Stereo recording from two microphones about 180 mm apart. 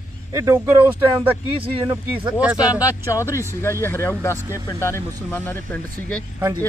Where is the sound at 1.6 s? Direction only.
30° right (ahead or behind).